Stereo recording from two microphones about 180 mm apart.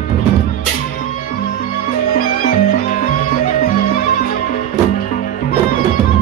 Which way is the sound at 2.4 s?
50° left (ahead or behind).